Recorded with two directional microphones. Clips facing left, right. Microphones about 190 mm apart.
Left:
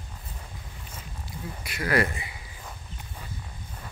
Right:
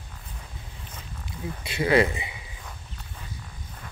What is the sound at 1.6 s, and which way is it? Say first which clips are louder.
Speech: right 5 dB; 25° right (ahead or behind).